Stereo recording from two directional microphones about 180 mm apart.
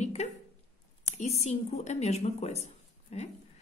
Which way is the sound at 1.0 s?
35° left (ahead or behind).